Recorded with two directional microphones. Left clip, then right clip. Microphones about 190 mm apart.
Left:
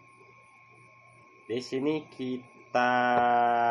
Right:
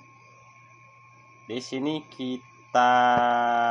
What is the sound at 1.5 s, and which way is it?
Speech, 30° right (ahead or behind).